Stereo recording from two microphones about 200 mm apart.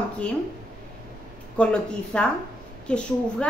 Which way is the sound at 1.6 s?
5° left (ahead or behind).